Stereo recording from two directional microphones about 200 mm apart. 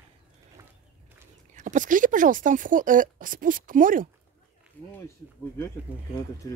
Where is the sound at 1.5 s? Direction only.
35° right (ahead or behind).